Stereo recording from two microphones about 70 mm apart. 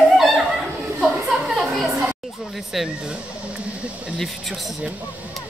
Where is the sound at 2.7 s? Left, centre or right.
Centre.